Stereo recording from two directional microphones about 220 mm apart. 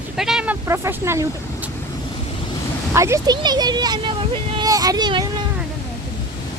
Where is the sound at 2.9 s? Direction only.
15° right (ahead or behind).